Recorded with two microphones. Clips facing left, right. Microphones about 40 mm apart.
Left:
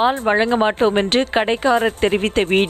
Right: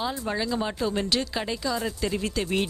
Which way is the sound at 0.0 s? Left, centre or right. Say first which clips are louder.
Left 12 dB; left.